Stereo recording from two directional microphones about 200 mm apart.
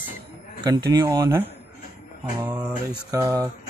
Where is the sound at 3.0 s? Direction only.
15° right (ahead or behind).